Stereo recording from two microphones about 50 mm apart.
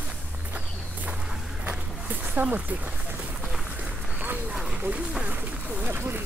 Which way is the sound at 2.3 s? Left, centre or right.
Right.